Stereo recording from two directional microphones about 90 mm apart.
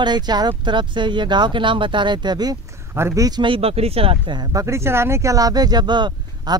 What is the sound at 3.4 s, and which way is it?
Speech, 85° right.